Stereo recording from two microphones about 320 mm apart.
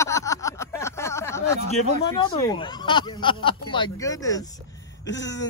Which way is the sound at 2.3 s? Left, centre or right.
Centre.